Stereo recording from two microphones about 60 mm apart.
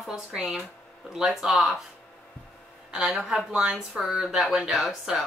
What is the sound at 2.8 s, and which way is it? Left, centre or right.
Speech, centre.